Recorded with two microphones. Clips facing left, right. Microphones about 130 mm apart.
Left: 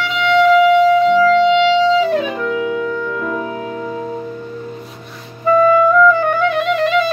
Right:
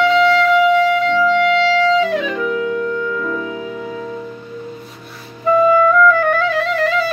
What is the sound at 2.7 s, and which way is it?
Music, 65° left (ahead or behind).